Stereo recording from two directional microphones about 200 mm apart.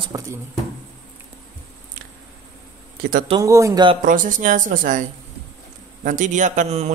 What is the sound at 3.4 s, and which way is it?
Speech, 15° right (ahead or behind).